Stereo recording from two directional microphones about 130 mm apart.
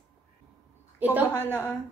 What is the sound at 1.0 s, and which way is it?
Speech, 15° right (ahead or behind).